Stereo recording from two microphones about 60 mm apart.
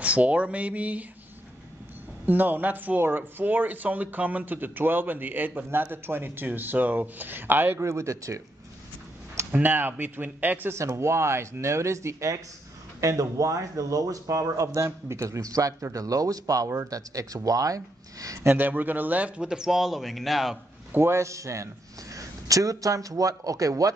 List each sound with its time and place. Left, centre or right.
0.0 s speech: right
2.2 s speech: right
7.8 s speech: right
9.5 s speech: right
10.7 s speech: right
18.6 s speech: right
19.4 s speech: centre
20.9 s speech: right
22.1 s a man's voice: right